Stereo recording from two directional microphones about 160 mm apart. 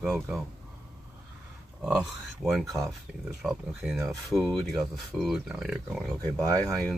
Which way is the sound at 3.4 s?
5° right (ahead or behind).